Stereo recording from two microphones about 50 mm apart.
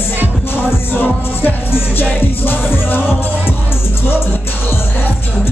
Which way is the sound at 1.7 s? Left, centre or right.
Left.